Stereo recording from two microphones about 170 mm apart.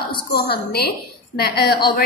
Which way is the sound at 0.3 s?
65° left (ahead or behind).